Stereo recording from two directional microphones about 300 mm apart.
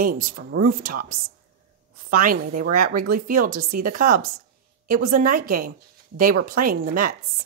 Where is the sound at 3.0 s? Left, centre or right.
Right.